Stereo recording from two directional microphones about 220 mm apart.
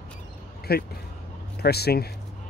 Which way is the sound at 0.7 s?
45° left (ahead or behind).